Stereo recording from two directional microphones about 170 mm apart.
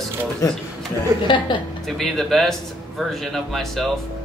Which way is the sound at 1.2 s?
30° left (ahead or behind).